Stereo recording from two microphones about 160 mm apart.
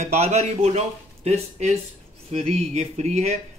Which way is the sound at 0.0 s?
45° right (ahead or behind).